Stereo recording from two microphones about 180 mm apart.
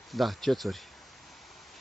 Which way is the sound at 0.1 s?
Centre (ahead or behind).